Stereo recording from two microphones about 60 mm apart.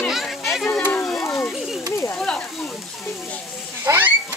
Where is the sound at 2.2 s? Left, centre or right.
Centre.